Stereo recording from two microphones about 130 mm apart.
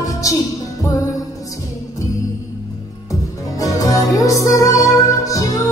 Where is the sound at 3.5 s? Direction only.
25° left (ahead or behind).